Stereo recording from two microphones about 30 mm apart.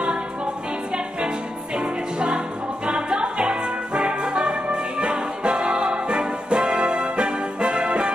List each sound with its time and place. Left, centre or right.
1.8 s music: right